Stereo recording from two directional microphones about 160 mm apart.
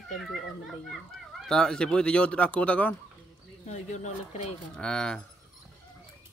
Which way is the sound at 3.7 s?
45° left (ahead or behind).